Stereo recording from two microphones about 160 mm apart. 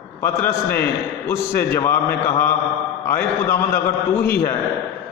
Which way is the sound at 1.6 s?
15° left (ahead or behind).